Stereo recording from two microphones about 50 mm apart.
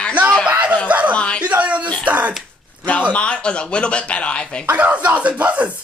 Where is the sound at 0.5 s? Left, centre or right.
Right.